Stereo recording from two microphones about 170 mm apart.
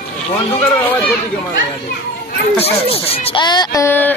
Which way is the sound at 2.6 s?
35° left (ahead or behind).